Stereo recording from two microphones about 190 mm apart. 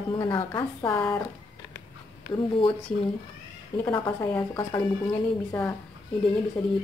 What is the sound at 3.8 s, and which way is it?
Speech, 10° left (ahead or behind).